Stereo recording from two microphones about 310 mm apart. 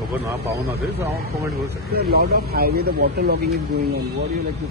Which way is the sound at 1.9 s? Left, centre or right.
Right.